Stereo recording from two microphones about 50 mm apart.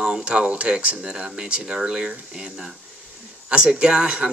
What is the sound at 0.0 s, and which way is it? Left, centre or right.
Speech, centre.